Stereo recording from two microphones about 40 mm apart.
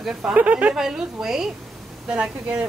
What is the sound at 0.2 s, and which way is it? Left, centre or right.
Speech, right.